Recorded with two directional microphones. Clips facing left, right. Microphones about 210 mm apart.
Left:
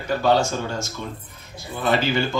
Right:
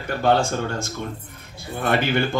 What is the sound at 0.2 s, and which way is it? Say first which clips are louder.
Speech: right 2 dB; 55° right (ahead or behind).